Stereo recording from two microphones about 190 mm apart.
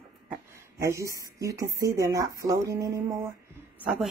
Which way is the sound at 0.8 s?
15° right (ahead or behind).